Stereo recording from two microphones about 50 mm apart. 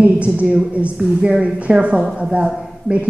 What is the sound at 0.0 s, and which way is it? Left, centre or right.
Speech, right.